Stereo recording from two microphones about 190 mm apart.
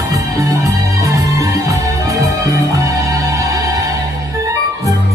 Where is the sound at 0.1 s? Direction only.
15° right (ahead or behind).